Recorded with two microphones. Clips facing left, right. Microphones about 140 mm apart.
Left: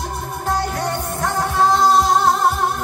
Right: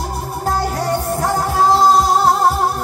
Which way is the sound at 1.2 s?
35° right (ahead or behind).